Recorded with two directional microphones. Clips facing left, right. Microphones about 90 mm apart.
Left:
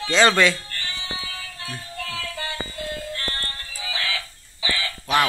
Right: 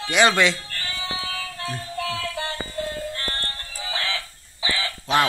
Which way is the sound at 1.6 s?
35° right (ahead or behind).